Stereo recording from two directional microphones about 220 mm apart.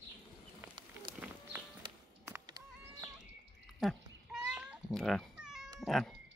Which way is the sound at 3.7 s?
Centre (ahead or behind).